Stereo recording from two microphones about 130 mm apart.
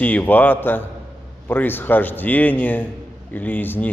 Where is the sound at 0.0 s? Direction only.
15° left (ahead or behind).